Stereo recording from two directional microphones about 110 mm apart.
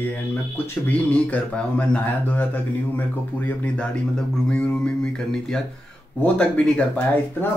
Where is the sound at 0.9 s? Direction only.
15° left (ahead or behind).